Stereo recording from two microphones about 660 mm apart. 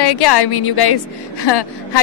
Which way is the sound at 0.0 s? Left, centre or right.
Left.